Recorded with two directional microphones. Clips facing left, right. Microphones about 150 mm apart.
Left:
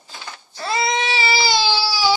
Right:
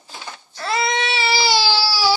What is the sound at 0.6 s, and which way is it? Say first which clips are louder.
Baby cry: even; centre (ahead or behind).